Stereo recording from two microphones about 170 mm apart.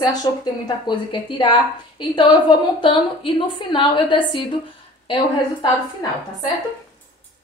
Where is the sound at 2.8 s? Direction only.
30° left (ahead or behind).